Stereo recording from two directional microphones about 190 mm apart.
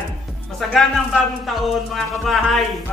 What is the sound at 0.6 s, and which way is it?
A man's voice, centre (ahead or behind).